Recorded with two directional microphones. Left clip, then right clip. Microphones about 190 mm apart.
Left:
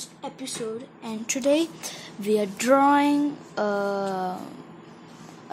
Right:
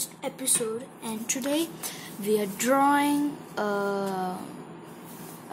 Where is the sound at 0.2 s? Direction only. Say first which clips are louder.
Right 2 dB; 10° left (ahead or behind).